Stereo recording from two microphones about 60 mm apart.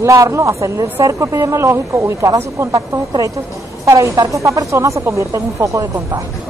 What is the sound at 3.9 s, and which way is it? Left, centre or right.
A woman's voice, right.